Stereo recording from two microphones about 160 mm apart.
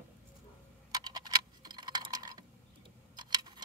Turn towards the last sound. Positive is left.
turn(degrees=-25)  # may be behind; listen again after turning